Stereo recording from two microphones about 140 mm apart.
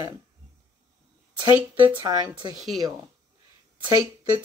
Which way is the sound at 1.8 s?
35° right (ahead or behind).